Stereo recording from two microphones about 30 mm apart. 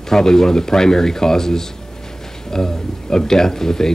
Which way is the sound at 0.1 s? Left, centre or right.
Centre.